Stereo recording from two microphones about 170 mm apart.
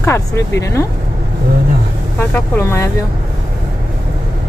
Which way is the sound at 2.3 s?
15° left (ahead or behind).